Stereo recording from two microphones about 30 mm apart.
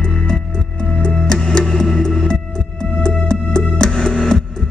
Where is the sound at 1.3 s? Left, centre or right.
Centre.